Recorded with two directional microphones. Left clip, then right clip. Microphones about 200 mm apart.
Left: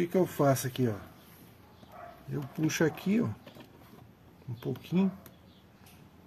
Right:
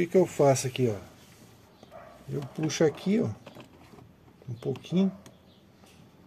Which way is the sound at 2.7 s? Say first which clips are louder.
Right 5 dB; centre (ahead or behind).